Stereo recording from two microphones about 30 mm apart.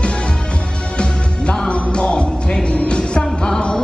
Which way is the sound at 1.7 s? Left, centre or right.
Left.